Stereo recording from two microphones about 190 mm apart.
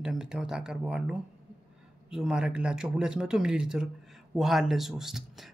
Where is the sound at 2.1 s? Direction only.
5° right (ahead or behind).